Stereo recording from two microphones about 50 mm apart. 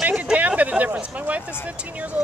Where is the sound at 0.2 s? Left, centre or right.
Right.